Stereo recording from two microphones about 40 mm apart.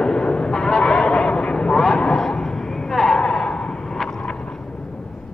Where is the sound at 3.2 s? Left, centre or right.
Left.